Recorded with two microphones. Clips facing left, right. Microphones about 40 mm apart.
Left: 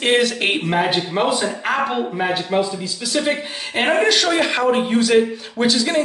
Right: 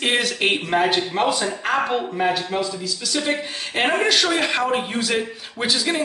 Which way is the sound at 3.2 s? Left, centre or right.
Centre.